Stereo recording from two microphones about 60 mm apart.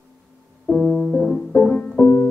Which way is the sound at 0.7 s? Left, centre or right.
Centre.